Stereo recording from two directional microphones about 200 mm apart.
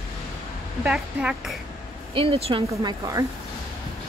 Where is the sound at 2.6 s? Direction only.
15° right (ahead or behind).